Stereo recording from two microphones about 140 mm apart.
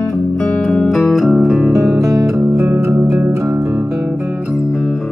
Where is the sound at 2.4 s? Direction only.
20° right (ahead or behind).